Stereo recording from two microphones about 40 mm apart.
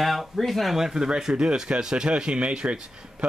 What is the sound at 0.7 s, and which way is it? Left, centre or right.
A man's voice, centre.